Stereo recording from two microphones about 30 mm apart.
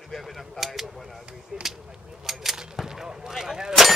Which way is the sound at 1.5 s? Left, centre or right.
Right.